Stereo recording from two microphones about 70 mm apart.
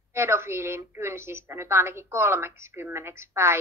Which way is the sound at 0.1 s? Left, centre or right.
Right.